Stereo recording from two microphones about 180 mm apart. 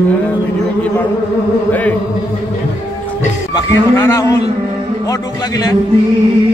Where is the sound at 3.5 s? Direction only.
15° left (ahead or behind).